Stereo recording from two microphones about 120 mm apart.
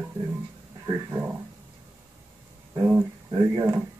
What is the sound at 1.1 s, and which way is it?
Speech, 15° right (ahead or behind).